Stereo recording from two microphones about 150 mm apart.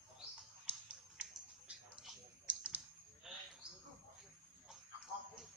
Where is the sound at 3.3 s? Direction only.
Centre (ahead or behind).